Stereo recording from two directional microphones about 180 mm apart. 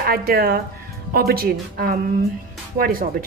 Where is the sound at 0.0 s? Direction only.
55° right (ahead or behind).